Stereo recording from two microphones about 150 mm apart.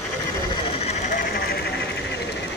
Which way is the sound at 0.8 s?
50° left (ahead or behind).